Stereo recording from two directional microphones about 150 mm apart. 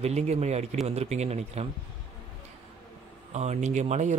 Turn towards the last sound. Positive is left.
turn(degrees=-50)  # may be behind; listen again after turning